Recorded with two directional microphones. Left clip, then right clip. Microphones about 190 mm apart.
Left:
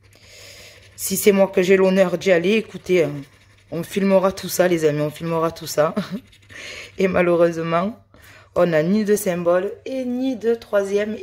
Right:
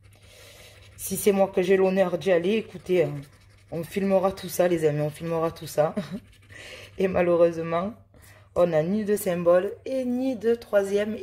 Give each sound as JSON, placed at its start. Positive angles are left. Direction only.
{"t": 1.2, "sound": "a woman's voice", "side_deg": 15}